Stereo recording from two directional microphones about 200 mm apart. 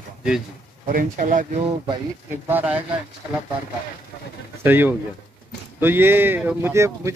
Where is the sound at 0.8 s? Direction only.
40° right (ahead or behind).